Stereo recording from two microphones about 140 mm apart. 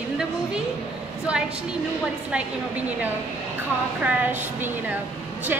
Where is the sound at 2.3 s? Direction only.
10° right (ahead or behind).